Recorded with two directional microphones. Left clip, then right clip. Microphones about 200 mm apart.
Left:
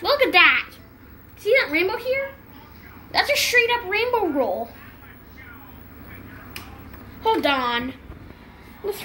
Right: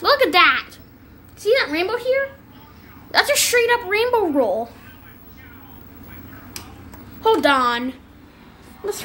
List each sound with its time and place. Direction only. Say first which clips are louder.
0.0 s a sound: right 2 dB; 35° right (ahead or behind)
1.4 s a woman's voice: right 1 dB; 35° right (ahead or behind)
7.2 s speech: right 5 dB; 30° right (ahead or behind)